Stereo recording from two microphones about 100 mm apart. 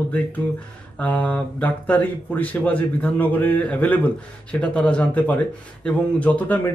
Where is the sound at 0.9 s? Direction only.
15° left (ahead or behind).